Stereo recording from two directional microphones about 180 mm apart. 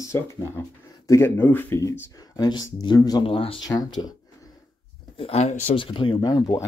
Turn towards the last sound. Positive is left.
turn(degrees=20)  # may be behind; listen again after turning